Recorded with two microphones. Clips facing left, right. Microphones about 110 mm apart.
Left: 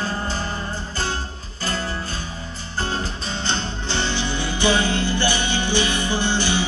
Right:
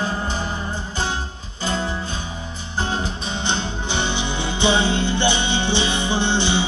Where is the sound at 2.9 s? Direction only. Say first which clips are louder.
Right 2 dB; 20° right (ahead or behind).